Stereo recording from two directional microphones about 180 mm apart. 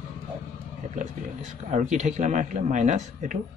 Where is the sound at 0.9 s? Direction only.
45° right (ahead or behind).